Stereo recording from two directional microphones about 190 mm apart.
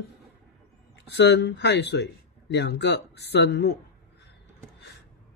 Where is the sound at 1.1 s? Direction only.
65° left (ahead or behind).